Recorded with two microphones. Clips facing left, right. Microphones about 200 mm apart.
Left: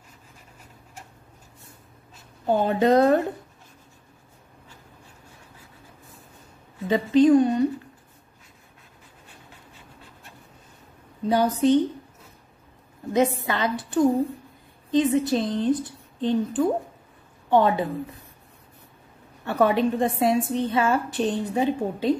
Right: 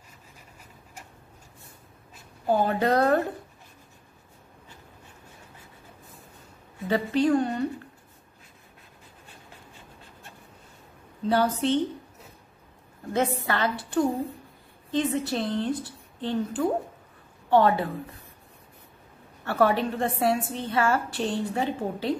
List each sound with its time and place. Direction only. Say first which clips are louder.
2.6 s a woman's voice: left 6 dB; 20° left (ahead or behind)
6.9 s a woman's voice: left 6 dB; 20° left (ahead or behind)
11.2 s a woman's voice: left 4 dB; 15° left (ahead or behind)
13.5 s a woman's voice: left 1 dB; 20° left (ahead or behind)
19.4 s a woman's voice: left 2 dB; 20° left (ahead or behind)